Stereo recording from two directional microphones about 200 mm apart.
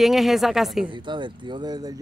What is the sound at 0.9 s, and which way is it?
Speech, 25° right (ahead or behind).